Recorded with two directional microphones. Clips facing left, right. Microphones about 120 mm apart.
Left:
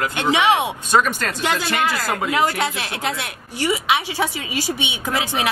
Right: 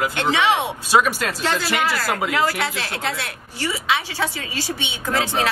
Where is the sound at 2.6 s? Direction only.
20° left (ahead or behind).